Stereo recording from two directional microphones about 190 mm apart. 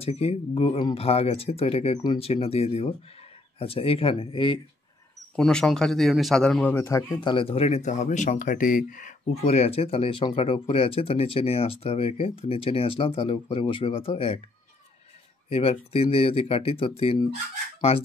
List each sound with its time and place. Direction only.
0.0 s a man's voice: 30° left (ahead or behind)
5.3 s a man's voice: 5° left (ahead or behind); by 14.4 s 30° left (ahead or behind)
15.5 s a man's voice: 30° left (ahead or behind)
17.7 s chicken: 30° left (ahead or behind)